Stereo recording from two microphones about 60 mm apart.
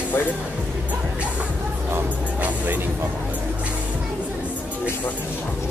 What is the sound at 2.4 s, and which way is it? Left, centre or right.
Music, right.